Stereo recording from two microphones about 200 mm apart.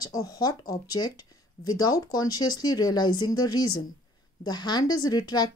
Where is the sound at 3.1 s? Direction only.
90° left.